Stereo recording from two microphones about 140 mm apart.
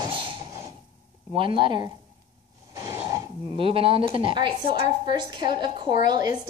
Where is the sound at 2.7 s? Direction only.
20° right (ahead or behind).